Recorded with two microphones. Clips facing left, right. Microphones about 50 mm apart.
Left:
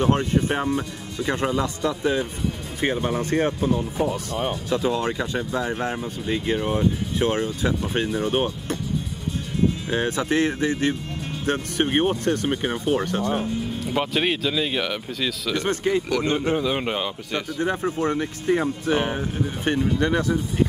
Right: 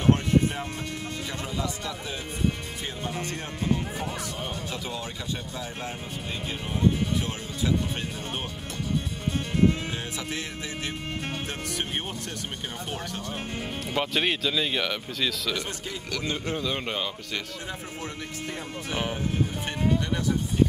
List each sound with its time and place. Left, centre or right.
0.0 s speech: left
4.8 s speech: left
10.0 s speech: left
13.4 s speech: right
13.9 s speech: centre
15.6 s speech: left
16.3 s a man's voice: left
17.6 s speech: left